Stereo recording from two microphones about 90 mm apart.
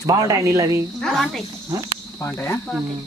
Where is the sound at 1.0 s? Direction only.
5° left (ahead or behind).